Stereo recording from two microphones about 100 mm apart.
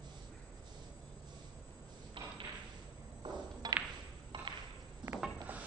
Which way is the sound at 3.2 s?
45° right (ahead or behind).